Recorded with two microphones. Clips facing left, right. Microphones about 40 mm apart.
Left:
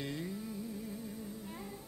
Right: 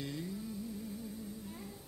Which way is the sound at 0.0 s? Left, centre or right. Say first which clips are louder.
Left 1 dB; left.